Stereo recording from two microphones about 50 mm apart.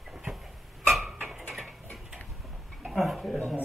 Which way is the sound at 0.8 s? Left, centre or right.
Centre.